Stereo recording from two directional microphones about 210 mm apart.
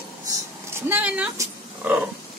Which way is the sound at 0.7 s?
10° right (ahead or behind).